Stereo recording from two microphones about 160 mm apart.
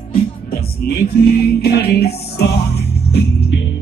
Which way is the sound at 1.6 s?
85° left.